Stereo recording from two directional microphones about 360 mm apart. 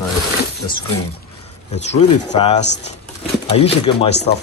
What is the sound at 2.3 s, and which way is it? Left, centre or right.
Speech, centre.